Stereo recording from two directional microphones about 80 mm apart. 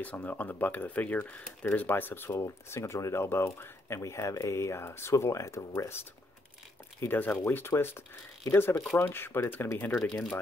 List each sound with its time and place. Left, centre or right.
0.0 s speech: left
7.0 s speech: left
9.9 s speech: centre